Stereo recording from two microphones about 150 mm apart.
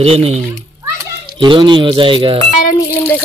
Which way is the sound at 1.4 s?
30° right (ahead or behind).